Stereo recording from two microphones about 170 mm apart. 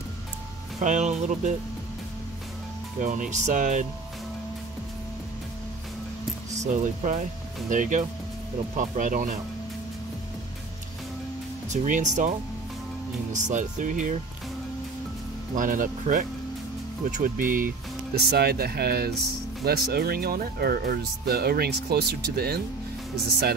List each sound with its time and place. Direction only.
0.7 s speech: 45° right (ahead or behind)
3.0 s speech: 45° right (ahead or behind)
6.6 s speech: 50° right (ahead or behind)
11.7 s speech: 50° right (ahead or behind)
15.5 s speech: 50° right (ahead or behind)
18.1 s speech: 70° right (ahead or behind)